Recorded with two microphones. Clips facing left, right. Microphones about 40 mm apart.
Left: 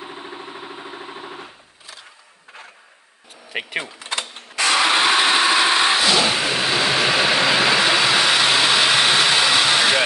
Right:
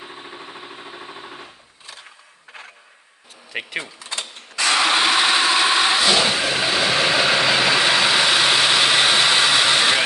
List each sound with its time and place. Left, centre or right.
0.0 s engine: centre
3.8 s a sound: left
4.6 s vehicle: centre